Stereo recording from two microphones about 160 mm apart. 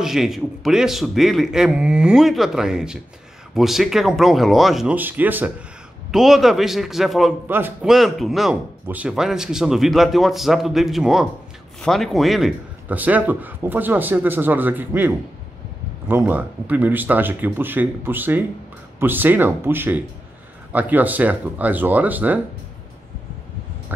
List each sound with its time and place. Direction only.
0.0 s speech: centre (ahead or behind)
7.4 s speech: 15° right (ahead or behind)
7.9 s speech: centre (ahead or behind)